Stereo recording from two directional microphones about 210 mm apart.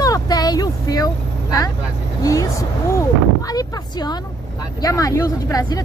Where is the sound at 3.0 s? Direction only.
15° left (ahead or behind).